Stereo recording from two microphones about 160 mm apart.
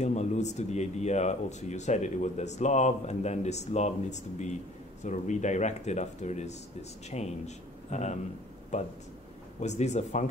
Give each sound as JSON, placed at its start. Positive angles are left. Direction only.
{"t": 0.0, "sound": "speech", "side_deg": 45}